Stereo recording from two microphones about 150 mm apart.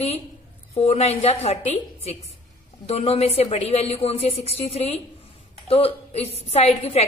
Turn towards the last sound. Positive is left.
turn(degrees=45)  # may be behind; listen again after turning